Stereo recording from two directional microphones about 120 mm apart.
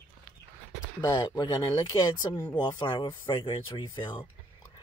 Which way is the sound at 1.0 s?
30° left (ahead or behind).